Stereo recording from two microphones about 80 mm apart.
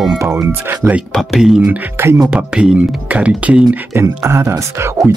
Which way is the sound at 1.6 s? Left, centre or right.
Right.